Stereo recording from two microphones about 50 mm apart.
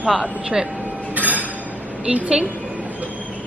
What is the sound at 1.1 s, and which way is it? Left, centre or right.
Train, right.